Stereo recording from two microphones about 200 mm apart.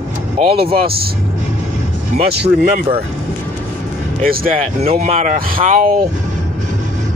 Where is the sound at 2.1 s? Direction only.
55° right (ahead or behind).